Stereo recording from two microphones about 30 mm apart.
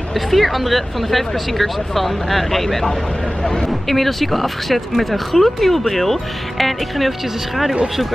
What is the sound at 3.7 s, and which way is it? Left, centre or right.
Speech, centre.